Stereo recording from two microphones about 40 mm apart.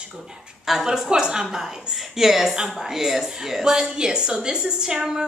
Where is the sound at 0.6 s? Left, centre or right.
Centre.